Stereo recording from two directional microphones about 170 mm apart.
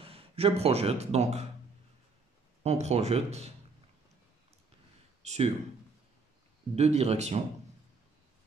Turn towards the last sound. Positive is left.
turn(degrees=-40)  # may be behind; listen again after turning